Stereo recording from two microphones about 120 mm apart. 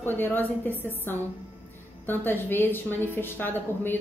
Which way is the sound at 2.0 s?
15° left (ahead or behind).